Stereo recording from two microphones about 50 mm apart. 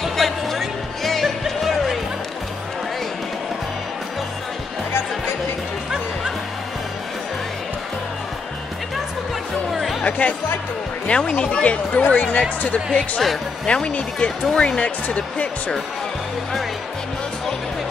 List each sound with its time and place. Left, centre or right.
0.0 s music: centre
9.7 s music: centre
10.0 s music: left
11.1 s speech: left
14.8 s speech: left